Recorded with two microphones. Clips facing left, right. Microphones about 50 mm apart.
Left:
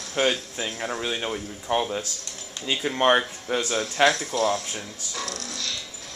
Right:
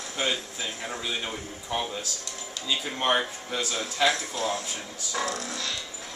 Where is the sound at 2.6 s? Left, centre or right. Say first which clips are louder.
Left 6 dB; left.